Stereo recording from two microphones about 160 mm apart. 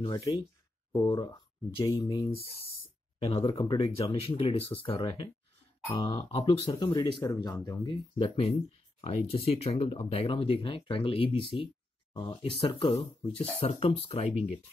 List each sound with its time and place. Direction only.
0.0 s speech: 25° left (ahead or behind)
3.2 s speech: 40° left (ahead or behind)
3.4 s speech: 30° left (ahead or behind)
6.3 s speech: 35° left (ahead or behind)